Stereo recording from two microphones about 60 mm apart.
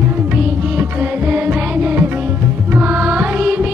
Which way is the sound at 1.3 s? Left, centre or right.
Right.